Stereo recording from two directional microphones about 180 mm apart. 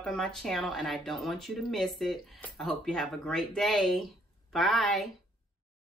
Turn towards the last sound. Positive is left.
turn(degrees=0)  # may be behind; listen again after turning